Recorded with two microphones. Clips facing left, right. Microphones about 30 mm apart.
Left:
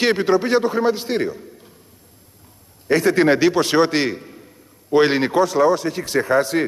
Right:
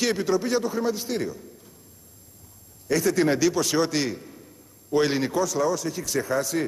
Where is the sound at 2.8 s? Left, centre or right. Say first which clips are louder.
Left 6 dB; left.